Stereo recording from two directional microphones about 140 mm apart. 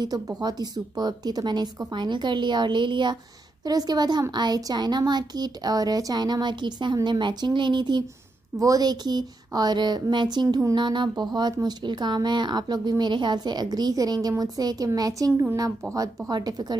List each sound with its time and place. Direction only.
0.4 s a woman's voice: 30° right (ahead or behind)